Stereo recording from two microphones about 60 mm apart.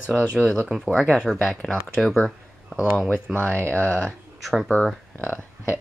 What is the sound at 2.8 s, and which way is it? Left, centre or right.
Speech, left.